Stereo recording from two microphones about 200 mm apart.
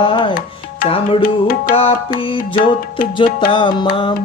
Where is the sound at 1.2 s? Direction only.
45° left (ahead or behind).